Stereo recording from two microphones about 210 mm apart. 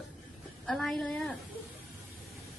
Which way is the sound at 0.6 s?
Centre (ahead or behind).